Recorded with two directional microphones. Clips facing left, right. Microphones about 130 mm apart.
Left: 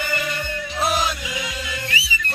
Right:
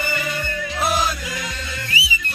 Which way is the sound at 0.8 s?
Centre (ahead or behind).